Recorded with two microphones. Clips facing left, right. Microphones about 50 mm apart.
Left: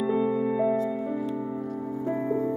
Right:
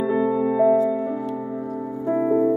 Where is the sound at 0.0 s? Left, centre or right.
Centre.